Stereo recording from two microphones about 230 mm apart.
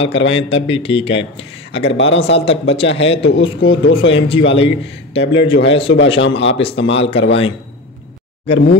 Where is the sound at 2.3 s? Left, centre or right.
Left.